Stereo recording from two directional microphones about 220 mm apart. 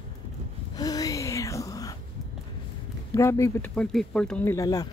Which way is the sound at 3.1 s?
15° left (ahead or behind).